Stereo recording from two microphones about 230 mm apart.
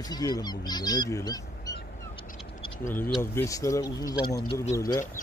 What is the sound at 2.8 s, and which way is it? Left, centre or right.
Speech, centre.